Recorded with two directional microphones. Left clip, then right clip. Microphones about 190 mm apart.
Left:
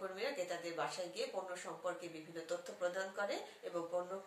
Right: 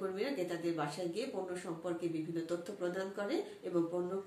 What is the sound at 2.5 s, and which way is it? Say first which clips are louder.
Speech: right 2 dB; 10° right (ahead or behind).